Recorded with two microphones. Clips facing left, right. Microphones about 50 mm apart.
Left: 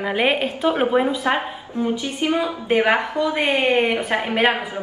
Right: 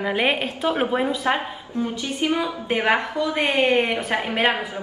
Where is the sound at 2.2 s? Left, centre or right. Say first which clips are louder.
Left 2 dB; left.